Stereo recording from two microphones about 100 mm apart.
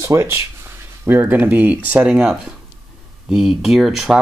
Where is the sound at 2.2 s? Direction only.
5° right (ahead or behind).